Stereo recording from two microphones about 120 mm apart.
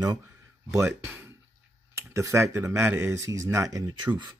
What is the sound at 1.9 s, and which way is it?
Speech, 25° right (ahead or behind).